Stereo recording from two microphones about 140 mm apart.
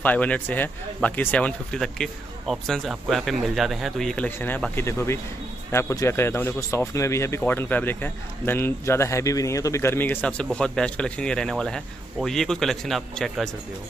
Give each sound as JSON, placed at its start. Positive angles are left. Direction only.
{"t": 0.0, "sound": "speech", "side_deg": 10}